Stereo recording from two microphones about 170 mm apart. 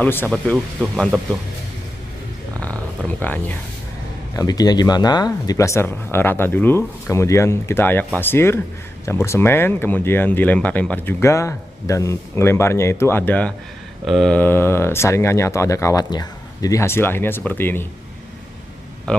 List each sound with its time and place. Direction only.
0.0 s speech: 10° left (ahead or behind)
0.3 s speech: centre (ahead or behind)
3.1 s speech: 10° left (ahead or behind)
4.4 s speech: 20° left (ahead or behind)